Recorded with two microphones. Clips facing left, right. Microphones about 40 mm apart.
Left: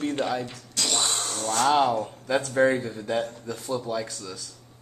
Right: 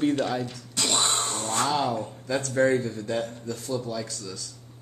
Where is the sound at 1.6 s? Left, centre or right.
Left.